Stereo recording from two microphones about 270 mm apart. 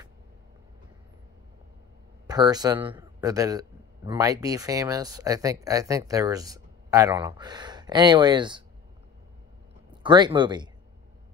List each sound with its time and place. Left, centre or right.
2.2 s a man's voice: centre
10.0 s a man's voice: centre